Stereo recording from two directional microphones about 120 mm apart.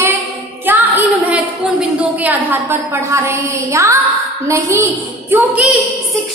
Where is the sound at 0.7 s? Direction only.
15° right (ahead or behind).